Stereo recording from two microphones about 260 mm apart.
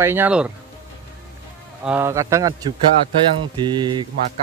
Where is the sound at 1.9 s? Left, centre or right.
Centre.